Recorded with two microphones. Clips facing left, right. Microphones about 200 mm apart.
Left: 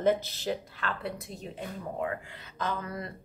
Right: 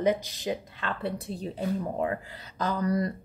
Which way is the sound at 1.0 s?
35° right (ahead or behind).